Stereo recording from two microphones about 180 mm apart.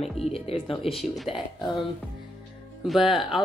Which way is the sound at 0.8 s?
Centre (ahead or behind).